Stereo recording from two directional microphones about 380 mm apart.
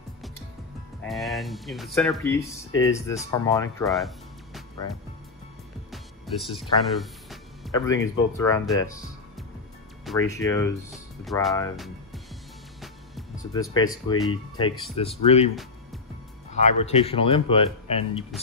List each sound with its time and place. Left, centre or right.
1.0 s speech: centre
5.9 s music: centre
7.7 s speech: centre
10.0 s speech: centre
13.5 s speech: centre
16.5 s speech: centre